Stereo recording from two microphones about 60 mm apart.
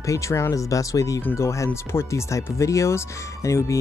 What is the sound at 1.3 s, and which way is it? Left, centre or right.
Speech, left.